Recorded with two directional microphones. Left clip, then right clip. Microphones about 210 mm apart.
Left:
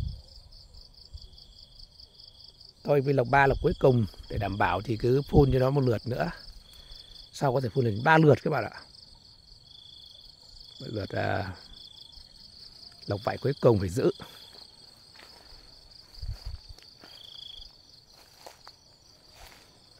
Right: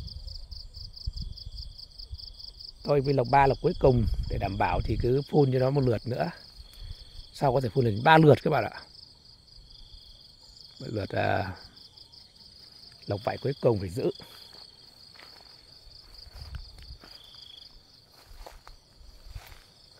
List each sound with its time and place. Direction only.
2.8 s cricket: 5° left (ahead or behind)
7.3 s speech: centre (ahead or behind)
10.8 s speech: 5° right (ahead or behind)
13.0 s cricket: 10° left (ahead or behind); by 14.3 s 25° left (ahead or behind)